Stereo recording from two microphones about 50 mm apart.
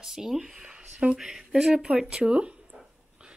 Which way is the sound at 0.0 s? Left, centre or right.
Centre.